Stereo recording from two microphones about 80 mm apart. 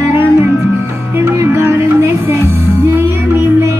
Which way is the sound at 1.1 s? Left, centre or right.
Right.